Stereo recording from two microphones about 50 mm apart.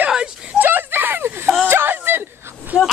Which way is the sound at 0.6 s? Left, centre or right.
Right.